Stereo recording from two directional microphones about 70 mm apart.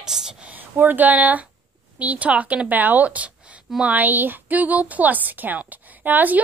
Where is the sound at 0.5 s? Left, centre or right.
Right.